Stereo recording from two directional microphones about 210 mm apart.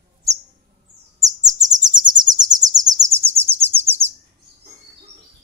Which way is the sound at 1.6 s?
20° right (ahead or behind).